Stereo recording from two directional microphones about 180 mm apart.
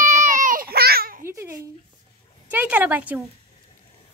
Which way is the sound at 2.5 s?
10° right (ahead or behind).